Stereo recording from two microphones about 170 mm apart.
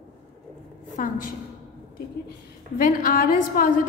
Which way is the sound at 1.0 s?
50° left (ahead or behind).